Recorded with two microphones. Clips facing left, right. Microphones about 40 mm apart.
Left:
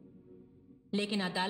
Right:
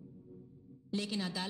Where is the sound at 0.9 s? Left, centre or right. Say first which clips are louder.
Left 4 dB; left.